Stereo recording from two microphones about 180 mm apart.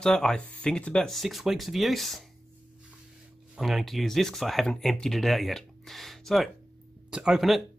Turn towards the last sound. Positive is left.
turn(degrees=0)  # may be behind; listen again after turning